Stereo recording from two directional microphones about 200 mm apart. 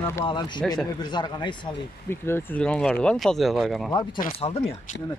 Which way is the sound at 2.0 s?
10° left (ahead or behind).